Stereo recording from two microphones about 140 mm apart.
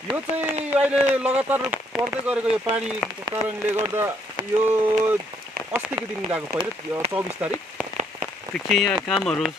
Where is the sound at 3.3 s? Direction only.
20° right (ahead or behind).